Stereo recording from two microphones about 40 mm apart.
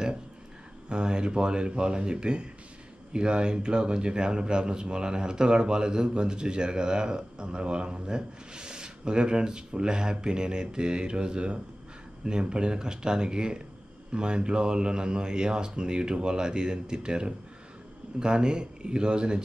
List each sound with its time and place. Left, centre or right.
0.8 s speech: right